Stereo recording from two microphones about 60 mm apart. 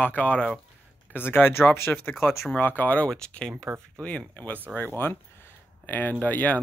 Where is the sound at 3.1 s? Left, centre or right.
Centre.